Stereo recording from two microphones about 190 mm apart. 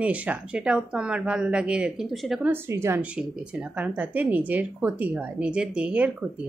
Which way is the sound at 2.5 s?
15° right (ahead or behind).